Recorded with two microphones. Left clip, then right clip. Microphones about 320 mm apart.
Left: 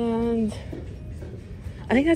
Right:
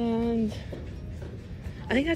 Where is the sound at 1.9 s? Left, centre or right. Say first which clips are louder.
Left 5 dB; centre.